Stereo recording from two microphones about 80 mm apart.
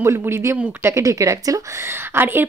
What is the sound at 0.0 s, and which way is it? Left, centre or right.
Speech, right.